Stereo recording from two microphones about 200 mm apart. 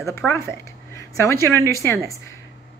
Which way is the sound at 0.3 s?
15° left (ahead or behind).